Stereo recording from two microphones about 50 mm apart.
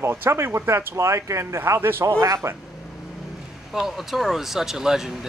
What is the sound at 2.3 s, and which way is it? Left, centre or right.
Speech, right.